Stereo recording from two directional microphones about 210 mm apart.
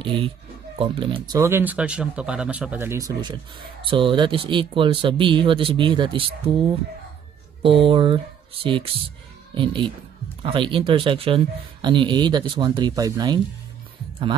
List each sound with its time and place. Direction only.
0.0 s speech: 25° right (ahead or behind)
7.6 s speech: 25° right (ahead or behind)